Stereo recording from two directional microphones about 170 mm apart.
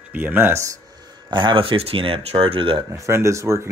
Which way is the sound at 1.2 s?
30° right (ahead or behind).